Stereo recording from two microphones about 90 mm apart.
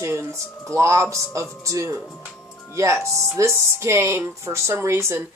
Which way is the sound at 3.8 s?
30° right (ahead or behind).